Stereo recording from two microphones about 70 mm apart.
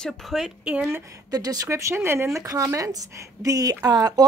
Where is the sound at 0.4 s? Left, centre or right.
Centre.